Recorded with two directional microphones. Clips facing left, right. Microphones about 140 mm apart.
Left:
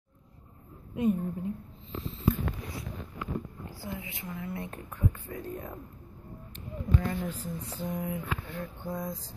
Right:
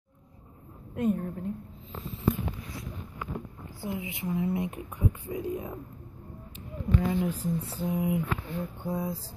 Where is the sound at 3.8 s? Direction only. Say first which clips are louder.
Right 7 dB; 20° right (ahead or behind).